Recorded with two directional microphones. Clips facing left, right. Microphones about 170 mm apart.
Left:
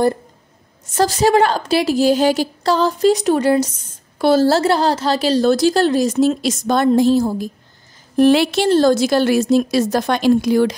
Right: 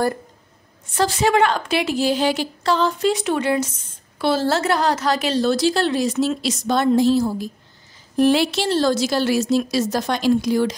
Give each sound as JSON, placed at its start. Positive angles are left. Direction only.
{"t": 0.9, "sound": "a woman's voice", "side_deg": 40}
{"t": 5.4, "sound": "a woman's voice", "side_deg": 45}
{"t": 8.2, "sound": "a woman's voice", "side_deg": 65}